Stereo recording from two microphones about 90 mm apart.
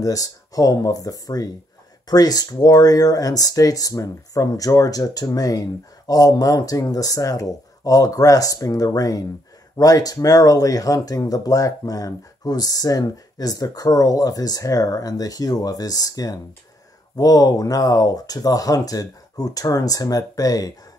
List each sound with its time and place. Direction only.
0.0 s speech: 40° left (ahead or behind)